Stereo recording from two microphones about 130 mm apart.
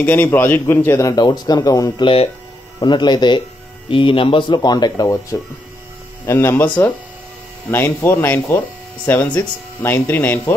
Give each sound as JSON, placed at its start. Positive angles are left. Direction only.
{"t": 0.0, "sound": "a man's voice", "side_deg": 15}
{"t": 1.1, "sound": "a man's voice", "side_deg": 30}